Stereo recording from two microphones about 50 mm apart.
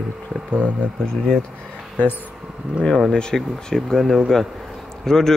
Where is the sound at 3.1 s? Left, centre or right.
Centre.